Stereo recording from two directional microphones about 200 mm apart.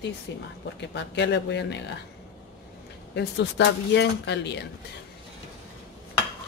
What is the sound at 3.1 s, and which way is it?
Speech, 55° left (ahead or behind).